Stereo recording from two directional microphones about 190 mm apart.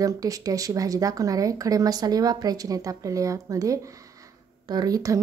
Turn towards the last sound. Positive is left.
turn(degrees=-20)  # may be behind; listen again after turning